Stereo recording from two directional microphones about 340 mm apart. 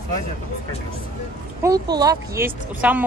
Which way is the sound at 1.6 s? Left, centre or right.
Centre.